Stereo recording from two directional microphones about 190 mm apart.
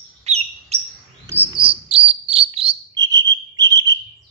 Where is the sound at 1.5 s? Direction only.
30° right (ahead or behind).